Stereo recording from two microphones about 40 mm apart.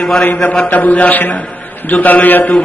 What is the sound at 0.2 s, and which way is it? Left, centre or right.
A man's voice, left.